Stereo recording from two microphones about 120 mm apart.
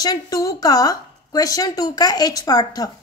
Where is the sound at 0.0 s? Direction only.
30° left (ahead or behind).